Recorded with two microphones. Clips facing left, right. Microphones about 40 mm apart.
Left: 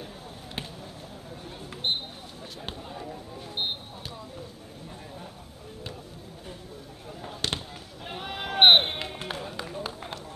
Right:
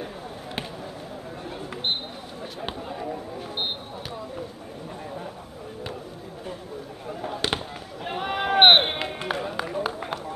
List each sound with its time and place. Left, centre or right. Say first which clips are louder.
2.9 s a sound: right 7 dB; right
7.1 s chop: right 8 dB; right
7.4 s basketball bounce: right 2 dB; centre
9.3 s run: right 7 dB; right